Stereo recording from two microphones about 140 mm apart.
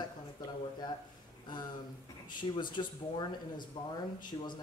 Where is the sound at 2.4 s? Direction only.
35° left (ahead or behind).